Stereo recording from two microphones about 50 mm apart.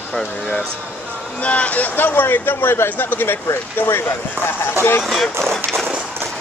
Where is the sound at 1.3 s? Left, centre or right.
Left.